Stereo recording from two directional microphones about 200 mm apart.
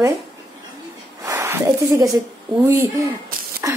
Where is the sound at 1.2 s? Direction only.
15° right (ahead or behind).